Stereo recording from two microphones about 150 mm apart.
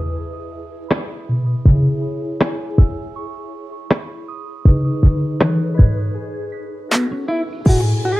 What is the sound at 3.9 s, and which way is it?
Music, centre (ahead or behind).